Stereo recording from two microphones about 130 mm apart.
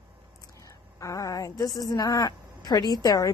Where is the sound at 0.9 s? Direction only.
25° left (ahead or behind).